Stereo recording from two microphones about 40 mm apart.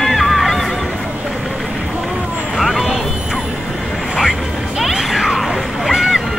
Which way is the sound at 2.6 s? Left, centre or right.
Centre.